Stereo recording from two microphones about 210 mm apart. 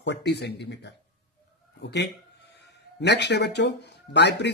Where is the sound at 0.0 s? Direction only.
55° left (ahead or behind).